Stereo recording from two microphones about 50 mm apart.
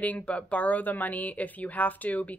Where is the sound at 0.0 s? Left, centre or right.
Left.